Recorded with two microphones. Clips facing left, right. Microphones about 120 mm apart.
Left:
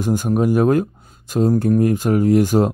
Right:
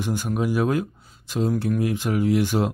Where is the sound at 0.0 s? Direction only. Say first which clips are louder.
Left 7 dB; 45° left (ahead or behind).